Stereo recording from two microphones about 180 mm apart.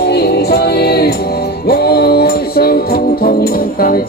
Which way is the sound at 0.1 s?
65° left (ahead or behind).